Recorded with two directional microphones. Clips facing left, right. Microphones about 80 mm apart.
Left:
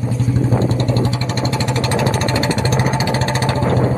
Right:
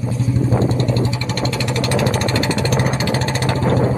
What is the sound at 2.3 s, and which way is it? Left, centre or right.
Jackhammer, left.